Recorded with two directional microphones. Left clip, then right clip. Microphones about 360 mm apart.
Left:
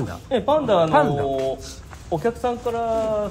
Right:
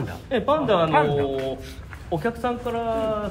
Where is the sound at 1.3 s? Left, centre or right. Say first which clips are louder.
Left 4 dB; left.